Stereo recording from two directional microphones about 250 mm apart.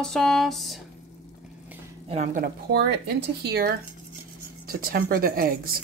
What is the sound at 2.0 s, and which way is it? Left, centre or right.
Speech, right.